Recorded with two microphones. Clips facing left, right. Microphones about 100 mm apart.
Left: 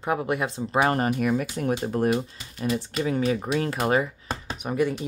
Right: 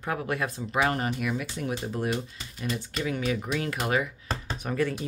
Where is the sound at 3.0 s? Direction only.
35° left (ahead or behind).